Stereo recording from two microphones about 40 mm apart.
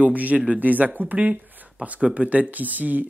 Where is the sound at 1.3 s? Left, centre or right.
Right.